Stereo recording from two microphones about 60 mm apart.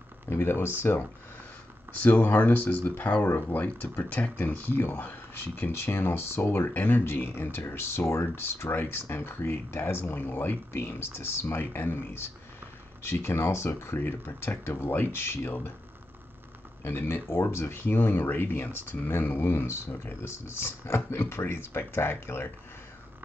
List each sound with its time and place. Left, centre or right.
0.3 s speech: left
2.0 s speech: left
2.8 s speech: left
4.1 s speech: left
16.8 s speech: left
19.5 s speech: left